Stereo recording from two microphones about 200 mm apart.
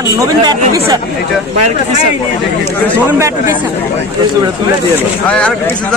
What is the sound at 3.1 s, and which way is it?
Speech, 15° right (ahead or behind).